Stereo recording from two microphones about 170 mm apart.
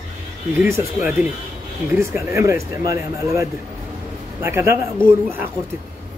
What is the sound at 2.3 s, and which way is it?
Speech, 15° right (ahead or behind).